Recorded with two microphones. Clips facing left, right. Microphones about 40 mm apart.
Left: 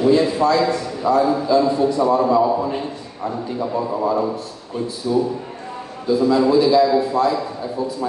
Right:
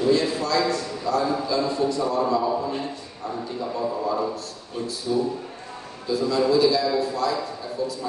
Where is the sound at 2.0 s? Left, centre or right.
Left.